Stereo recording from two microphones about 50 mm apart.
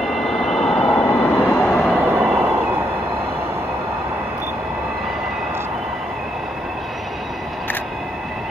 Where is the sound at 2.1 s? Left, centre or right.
Right.